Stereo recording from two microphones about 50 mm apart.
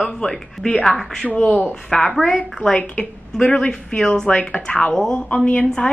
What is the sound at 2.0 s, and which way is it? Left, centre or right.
Speech, centre.